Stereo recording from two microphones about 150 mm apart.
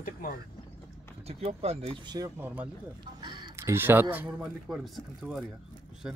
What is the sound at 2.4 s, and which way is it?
Speech, 10° right (ahead or behind).